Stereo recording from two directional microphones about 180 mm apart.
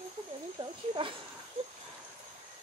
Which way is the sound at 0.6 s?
30° right (ahead or behind).